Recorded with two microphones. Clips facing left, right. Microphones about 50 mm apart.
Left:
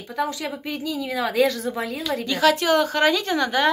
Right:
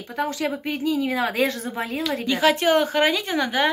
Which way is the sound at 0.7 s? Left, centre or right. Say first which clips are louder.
Right 4 dB; right.